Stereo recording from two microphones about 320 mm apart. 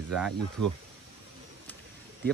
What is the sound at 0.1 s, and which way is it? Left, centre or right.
Speech, centre.